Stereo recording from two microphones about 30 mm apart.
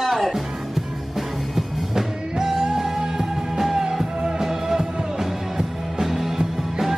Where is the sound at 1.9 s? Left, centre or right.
Centre.